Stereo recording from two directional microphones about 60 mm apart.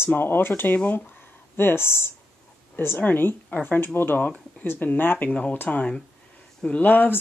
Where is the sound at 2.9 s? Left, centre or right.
Left.